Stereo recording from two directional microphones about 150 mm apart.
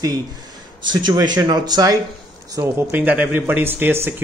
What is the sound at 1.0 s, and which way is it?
Speech, 30° right (ahead or behind).